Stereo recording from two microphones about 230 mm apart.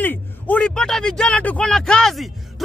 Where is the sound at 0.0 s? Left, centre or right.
Centre.